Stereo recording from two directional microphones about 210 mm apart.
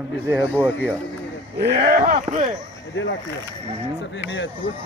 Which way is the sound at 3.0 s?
60° left (ahead or behind).